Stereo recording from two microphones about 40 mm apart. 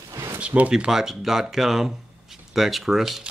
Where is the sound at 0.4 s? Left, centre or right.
Right.